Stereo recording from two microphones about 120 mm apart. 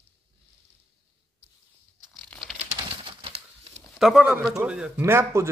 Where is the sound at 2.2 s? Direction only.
5° left (ahead or behind).